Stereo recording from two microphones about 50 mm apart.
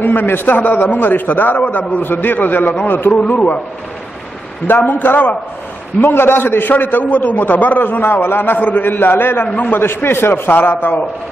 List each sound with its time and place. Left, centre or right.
0.0 s a man's voice: left
3.2 s a man's voice: left
4.6 s a man's voice: left
8.5 s a man's voice: left
8.8 s a man's voice: left
9.8 s a man's voice: left